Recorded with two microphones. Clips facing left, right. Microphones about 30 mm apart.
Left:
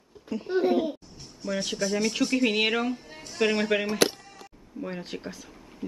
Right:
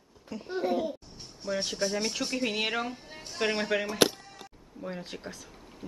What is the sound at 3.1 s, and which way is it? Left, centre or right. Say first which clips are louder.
Music: left 4 dB; centre.